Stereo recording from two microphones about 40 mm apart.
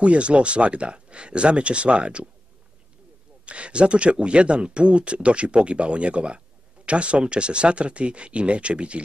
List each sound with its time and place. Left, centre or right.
0.0 s speech: right
3.4 s speech: right